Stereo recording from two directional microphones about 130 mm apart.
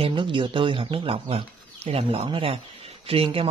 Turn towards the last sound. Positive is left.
turn(degrees=-45)  # may be behind; listen again after turning